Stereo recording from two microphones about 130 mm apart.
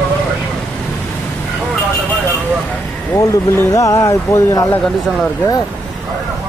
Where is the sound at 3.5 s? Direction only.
20° left (ahead or behind).